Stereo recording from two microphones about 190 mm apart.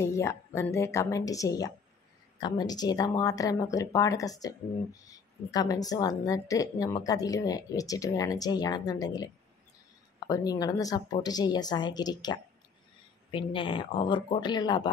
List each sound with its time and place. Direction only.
0.0 s a woman's voice: 15° left (ahead or behind)